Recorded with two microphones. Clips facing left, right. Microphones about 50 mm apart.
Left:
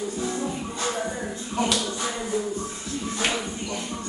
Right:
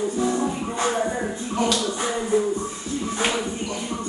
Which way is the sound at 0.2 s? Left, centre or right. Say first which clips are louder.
Right 6 dB; right.